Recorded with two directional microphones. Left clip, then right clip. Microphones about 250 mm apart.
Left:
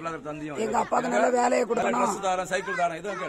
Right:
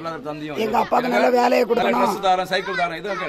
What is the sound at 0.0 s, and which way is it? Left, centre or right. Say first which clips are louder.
A man's voice: right 5 dB; centre.